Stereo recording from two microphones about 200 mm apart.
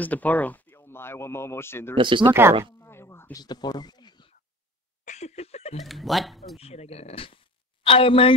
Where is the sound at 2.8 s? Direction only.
10° left (ahead or behind).